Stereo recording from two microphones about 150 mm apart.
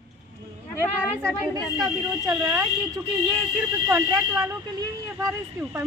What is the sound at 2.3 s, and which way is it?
Speech, 15° right (ahead or behind).